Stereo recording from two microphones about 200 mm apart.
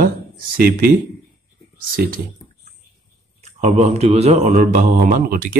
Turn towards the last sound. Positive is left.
turn(degrees=-45)  # may be behind; listen again after turning